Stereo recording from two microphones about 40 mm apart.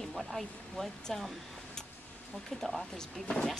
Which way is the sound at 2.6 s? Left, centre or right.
Centre.